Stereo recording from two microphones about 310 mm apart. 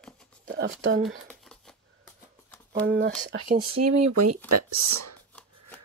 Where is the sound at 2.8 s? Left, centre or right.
Right.